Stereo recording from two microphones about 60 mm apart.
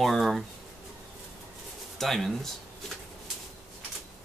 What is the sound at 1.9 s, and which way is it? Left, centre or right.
Speech, centre.